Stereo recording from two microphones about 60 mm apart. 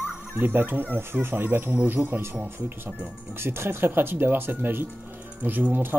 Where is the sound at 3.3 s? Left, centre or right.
Right.